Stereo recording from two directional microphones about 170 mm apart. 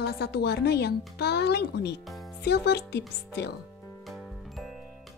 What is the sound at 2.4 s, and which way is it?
Speech, 75° left (ahead or behind).